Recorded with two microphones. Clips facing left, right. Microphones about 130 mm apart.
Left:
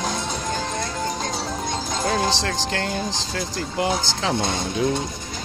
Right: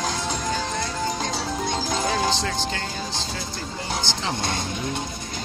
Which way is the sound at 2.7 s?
65° left (ahead or behind).